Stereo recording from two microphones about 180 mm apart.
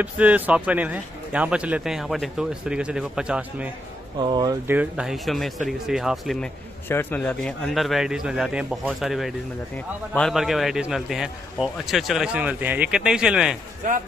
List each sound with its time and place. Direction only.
0.0 s a man's voice: 10° right (ahead or behind)
4.2 s speech: 25° right (ahead or behind)
4.6 s a man's voice: 5° right (ahead or behind)
6.9 s a man's voice: 10° left (ahead or behind)